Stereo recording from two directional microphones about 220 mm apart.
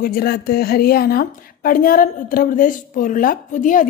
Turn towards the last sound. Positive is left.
turn(degrees=35)  # may be behind; listen again after turning